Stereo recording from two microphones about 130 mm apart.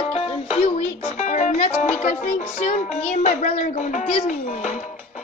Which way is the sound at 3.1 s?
65° left (ahead or behind).